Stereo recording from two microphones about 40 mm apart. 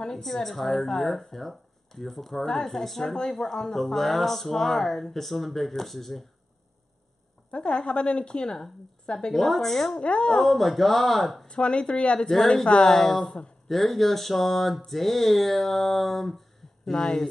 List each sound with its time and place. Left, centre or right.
0.1 s speech: centre
7.5 s a woman's voice: left
9.3 s speech: centre
9.9 s a woman's voice: left
10.3 s speech: centre
11.4 s a woman's voice: left
12.3 s speech: centre
12.6 s a woman's voice: left
12.9 s speech: centre